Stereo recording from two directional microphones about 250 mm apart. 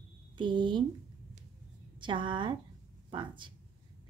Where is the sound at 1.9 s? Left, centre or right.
Centre.